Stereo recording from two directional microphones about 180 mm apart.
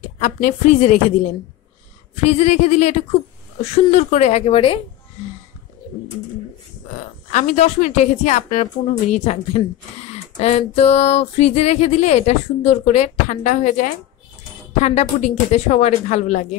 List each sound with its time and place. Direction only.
0.2 s speech: 40° left (ahead or behind)
7.2 s speech: 40° left (ahead or behind)